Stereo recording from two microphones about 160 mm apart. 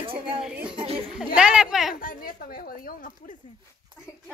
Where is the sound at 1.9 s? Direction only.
65° left (ahead or behind).